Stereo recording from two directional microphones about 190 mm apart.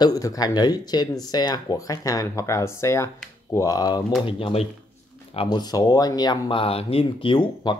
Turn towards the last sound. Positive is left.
turn(degrees=25)  # may be behind; listen again after turning